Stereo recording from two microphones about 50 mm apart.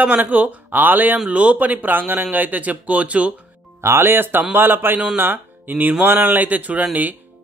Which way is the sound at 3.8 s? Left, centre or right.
Right.